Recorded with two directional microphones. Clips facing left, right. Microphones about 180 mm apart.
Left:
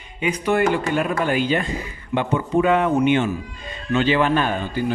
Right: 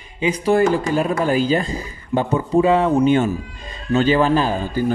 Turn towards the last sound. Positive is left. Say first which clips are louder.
# right 3 dB
turn(degrees=-35)  # may be behind; listen again after turning